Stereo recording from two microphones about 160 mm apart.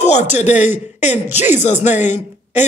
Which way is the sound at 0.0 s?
45° left (ahead or behind).